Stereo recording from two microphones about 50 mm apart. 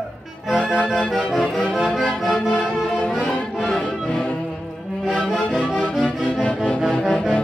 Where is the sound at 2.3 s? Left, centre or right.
Left.